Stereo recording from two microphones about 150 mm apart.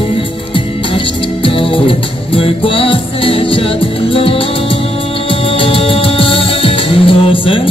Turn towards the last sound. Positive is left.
turn(degrees=35)  # may be behind; listen again after turning